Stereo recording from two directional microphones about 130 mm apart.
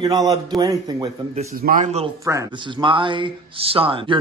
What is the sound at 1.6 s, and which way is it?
Speech, 90° right.